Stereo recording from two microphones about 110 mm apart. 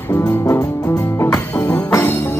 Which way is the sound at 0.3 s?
30° left (ahead or behind).